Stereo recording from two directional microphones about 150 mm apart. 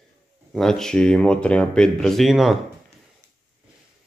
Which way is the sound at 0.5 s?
5° left (ahead or behind).